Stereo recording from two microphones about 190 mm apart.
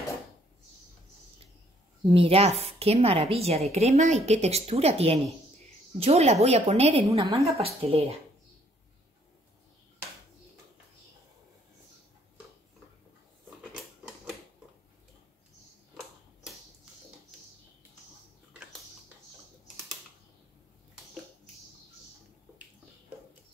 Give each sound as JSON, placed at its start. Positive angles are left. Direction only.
{"t": 2.0, "sound": "a woman's voice", "side_deg": -30}